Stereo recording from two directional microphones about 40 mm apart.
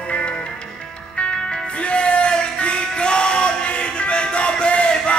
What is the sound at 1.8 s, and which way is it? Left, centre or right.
Music, left.